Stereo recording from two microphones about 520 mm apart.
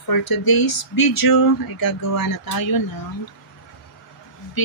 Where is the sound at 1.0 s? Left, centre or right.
Left.